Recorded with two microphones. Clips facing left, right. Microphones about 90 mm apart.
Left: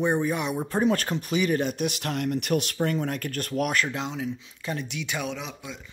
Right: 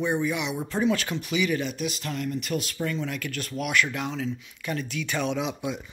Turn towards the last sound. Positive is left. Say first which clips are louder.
# right 7 dB
turn(degrees=-5)  # may be behind; listen again after turning